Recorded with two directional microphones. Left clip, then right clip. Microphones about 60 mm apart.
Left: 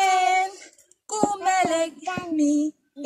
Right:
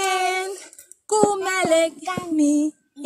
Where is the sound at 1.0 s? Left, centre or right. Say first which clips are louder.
Right 4 dB; left.